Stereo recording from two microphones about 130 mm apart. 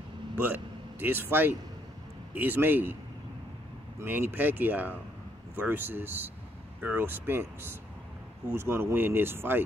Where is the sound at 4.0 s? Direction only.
15° right (ahead or behind).